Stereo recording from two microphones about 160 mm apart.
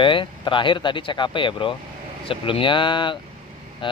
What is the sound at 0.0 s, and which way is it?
Speech, 30° left (ahead or behind).